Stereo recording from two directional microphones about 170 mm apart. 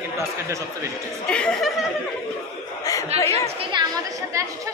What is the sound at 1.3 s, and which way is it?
Speech, 5° left (ahead or behind).